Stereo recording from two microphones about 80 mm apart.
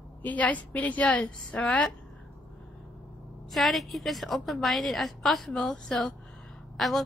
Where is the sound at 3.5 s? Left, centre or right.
Centre.